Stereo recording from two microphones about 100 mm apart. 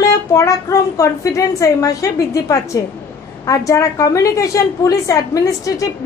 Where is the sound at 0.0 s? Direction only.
30° left (ahead or behind).